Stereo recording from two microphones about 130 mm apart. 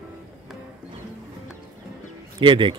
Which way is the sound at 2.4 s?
40° right (ahead or behind).